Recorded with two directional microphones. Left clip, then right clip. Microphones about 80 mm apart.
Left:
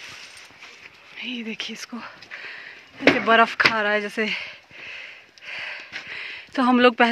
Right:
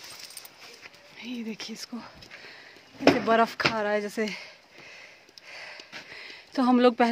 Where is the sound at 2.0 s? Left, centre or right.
Centre.